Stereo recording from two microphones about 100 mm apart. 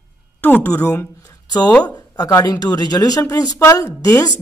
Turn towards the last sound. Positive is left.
turn(degrees=35)  # may be behind; listen again after turning